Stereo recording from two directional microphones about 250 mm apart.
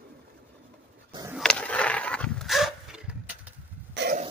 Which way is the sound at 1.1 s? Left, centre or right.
Centre.